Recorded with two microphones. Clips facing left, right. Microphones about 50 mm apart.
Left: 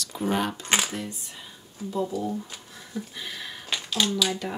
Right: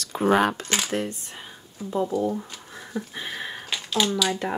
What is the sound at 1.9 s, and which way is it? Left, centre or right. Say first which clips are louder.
Speech: right 4 dB; right.